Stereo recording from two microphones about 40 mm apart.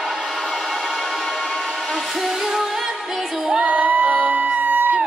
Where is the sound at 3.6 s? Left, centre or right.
Right.